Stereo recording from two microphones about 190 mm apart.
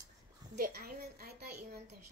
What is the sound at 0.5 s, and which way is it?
A woman's voice, 55° right (ahead or behind).